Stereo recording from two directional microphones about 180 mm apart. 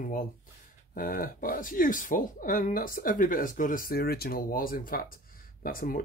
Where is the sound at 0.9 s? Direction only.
55° left (ahead or behind).